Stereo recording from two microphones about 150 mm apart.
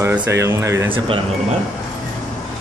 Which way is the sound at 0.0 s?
15° right (ahead or behind).